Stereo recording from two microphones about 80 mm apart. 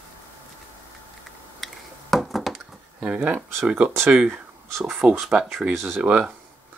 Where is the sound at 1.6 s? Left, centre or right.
Centre.